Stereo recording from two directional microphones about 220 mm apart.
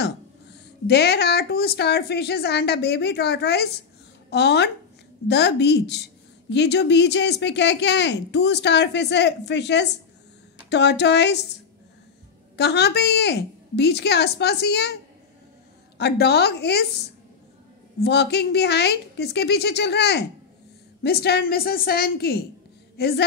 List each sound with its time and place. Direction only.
0.0 s speech: 50° left (ahead or behind)
12.5 s speech: 50° left (ahead or behind)
16.0 s speech: 50° left (ahead or behind)